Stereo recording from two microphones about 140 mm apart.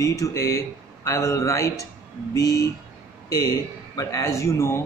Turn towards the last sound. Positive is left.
turn(degrees=20)  # may be behind; listen again after turning